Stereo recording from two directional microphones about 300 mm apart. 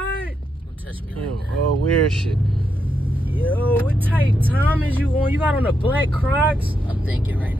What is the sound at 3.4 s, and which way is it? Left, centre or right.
Speech, centre.